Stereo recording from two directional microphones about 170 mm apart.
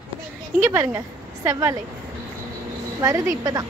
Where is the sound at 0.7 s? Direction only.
15° right (ahead or behind).